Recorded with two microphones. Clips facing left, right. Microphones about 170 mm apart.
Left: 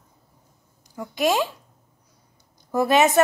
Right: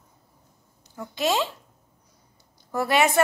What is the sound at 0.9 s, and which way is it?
Speech, 15° left (ahead or behind).